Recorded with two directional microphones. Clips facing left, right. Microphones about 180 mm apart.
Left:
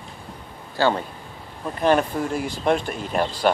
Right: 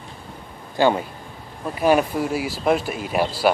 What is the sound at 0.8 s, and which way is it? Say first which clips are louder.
Speech: right 3 dB; 15° right (ahead or behind).